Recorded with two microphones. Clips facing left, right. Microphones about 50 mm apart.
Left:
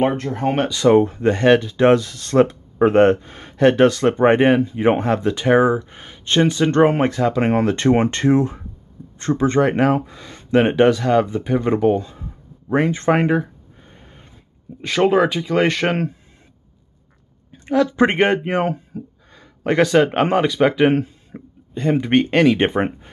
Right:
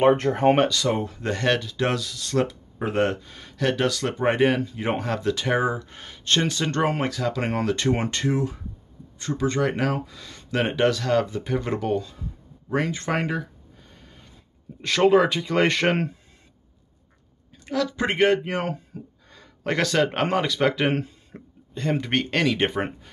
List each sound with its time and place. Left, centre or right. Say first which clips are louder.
0.1 s speech: right 3 dB; right
0.8 s speech: left 12 dB; left
1.2 s speech: left 9 dB; centre
14.8 s speech: left 2 dB; centre
17.5 s speech: left 8 dB; left
18.9 s speech: left 7 dB; centre